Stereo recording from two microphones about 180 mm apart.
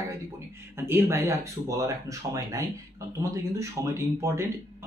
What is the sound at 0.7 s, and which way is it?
Speech, 15° right (ahead or behind).